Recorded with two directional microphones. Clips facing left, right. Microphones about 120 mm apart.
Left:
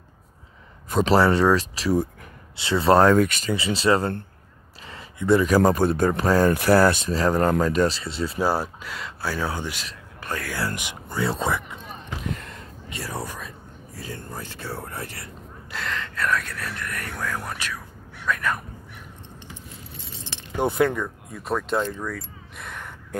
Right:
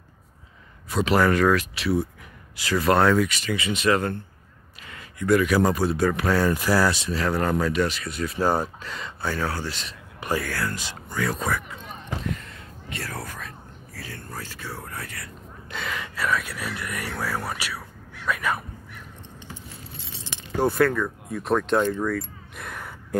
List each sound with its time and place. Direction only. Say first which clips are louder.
0.8 s speech: left 2 dB; 40° left (ahead or behind)
2.5 s speech: left 3 dB; 25° left (ahead or behind); by 3.5 s 45° left (ahead or behind)
3.5 s speech: left 2 dB; 30° left (ahead or behind)
4.8 s a sound: left 2 dB; 30° left (ahead or behind)
5.5 s speech: left 3 dB; 45° left (ahead or behind)
6.5 s speech: left 4 dB; 60° left (ahead or behind); by 8.0 s 40° left (ahead or behind)
8.0 s speech: left 1 dB; 25° left (ahead or behind)
8.4 s speech: right 1 dB; 10° left (ahead or behind); by 11.8 s 25° left (ahead or behind)
12.9 s speech: left 2 dB; 20° left (ahead or behind)
15.7 s speech: left 1 dB; 5° right (ahead or behind)
20.5 s speech: right 1 dB; 20° left (ahead or behind)
21.3 s speech: right 4 dB; centre (ahead or behind)
22.0 s a sound: right 6 dB; centre (ahead or behind)